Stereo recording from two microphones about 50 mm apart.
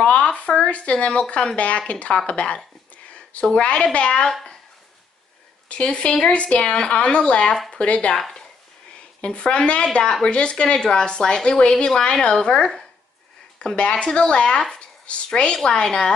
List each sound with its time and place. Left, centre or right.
0.0 s a sound: left
1.6 s speech: left
5.7 s speech: left
8.1 s speech: centre
9.2 s a woman's voice: left